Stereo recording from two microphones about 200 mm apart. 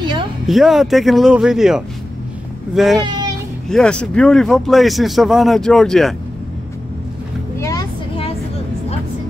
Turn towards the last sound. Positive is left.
turn(degrees=15)  # may be behind; listen again after turning